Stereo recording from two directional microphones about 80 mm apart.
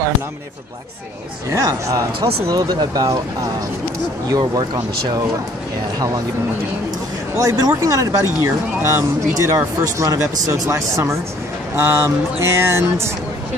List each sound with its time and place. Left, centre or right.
1.5 s speech: right
2.5 s speech: right
4.3 s speech: right
7.3 s speech: right